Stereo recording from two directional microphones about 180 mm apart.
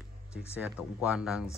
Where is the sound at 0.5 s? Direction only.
5° right (ahead or behind).